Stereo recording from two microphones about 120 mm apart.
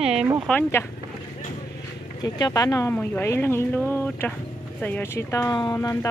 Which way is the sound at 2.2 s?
35° left (ahead or behind).